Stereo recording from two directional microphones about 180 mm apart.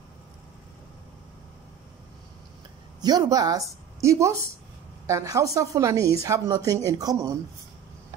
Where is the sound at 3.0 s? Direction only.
20° right (ahead or behind).